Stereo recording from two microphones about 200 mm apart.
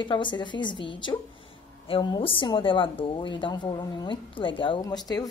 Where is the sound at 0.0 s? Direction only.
25° left (ahead or behind).